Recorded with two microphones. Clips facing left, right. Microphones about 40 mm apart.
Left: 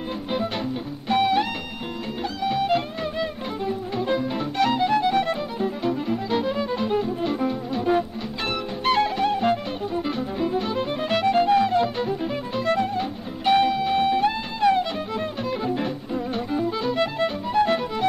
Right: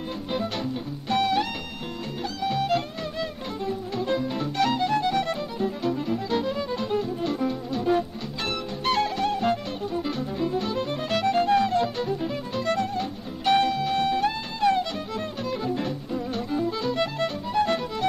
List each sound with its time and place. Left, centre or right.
1.0 s music: centre